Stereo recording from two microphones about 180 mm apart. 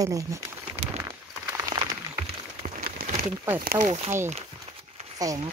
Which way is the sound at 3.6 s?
55° right (ahead or behind).